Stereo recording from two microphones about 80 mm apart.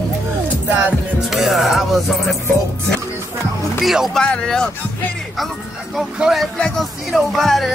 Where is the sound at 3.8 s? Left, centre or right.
Centre.